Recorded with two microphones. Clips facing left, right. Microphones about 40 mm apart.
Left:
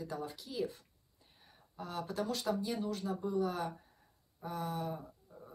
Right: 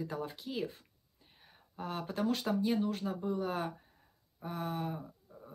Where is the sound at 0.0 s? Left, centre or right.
Right.